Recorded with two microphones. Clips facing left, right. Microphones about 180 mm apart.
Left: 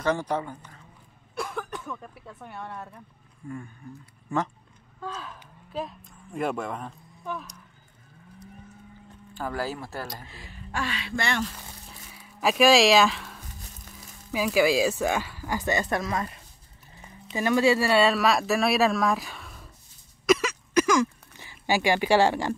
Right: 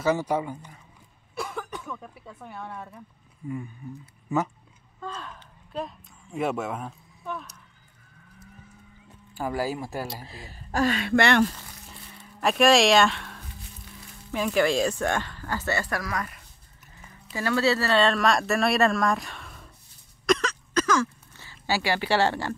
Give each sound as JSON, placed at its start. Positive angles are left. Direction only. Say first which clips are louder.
{"t": 0.0, "sound": "a woman's voice", "louder": "right 2 dB", "side_deg": -10}
{"t": 1.3, "sound": "speech", "louder": "left 1 dB", "side_deg": 0}
{"t": 5.0, "sound": "speech", "louder": "even", "side_deg": 5}
{"t": 9.3, "sound": "a woman's voice", "louder": "right 3 dB", "side_deg": -10}
{"t": 10.2, "sound": "speech", "louder": "right 2 dB", "side_deg": -40}
{"t": 11.9, "sound": "a sound", "louder": "right 1 dB", "side_deg": 5}
{"t": 13.5, "sound": "music", "louder": "right 1 dB", "side_deg": 45}
{"t": 14.3, "sound": "speech", "louder": "left 1 dB", "side_deg": 5}
{"t": 20.2, "sound": "a sound", "louder": "left 2 dB", "side_deg": 10}